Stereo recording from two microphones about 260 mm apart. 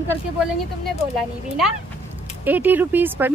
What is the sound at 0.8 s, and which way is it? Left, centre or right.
Speech, centre.